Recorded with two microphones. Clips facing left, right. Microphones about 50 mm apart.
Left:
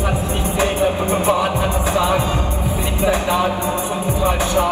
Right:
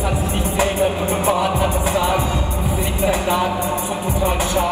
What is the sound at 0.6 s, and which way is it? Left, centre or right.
Music, left.